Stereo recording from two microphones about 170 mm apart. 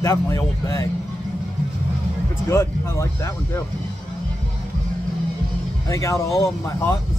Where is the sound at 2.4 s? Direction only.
15° left (ahead or behind).